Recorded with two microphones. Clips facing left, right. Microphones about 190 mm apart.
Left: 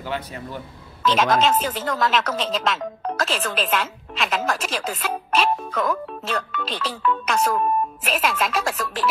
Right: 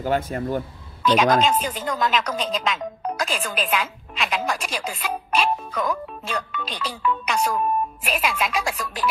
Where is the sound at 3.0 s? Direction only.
15° right (ahead or behind).